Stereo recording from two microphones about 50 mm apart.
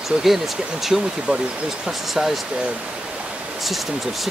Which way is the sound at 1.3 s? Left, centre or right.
Right.